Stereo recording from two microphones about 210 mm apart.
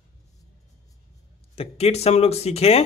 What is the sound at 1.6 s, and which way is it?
Speech, 30° left (ahead or behind).